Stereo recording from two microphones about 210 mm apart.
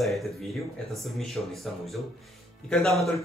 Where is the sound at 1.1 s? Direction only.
Centre (ahead or behind).